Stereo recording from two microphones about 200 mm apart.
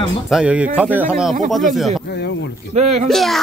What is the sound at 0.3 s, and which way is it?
Speech, 5° right (ahead or behind).